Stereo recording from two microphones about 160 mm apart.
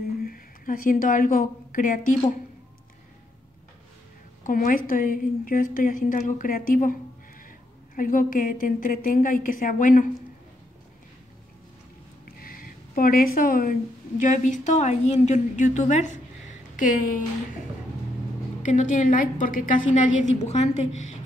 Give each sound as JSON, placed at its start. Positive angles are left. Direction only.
{"t": 0.2, "sound": "a woman's voice", "side_deg": 60}
{"t": 4.4, "sound": "a woman's voice", "side_deg": 55}
{"t": 12.4, "sound": "a sound", "side_deg": 65}
{"t": 14.2, "sound": "a woman's voice", "side_deg": 50}
{"t": 18.6, "sound": "a woman's voice", "side_deg": 50}